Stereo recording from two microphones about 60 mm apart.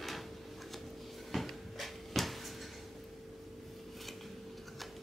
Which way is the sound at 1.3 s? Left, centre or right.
Centre.